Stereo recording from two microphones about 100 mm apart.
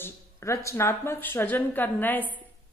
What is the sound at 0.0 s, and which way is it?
A woman's voice, 30° left (ahead or behind).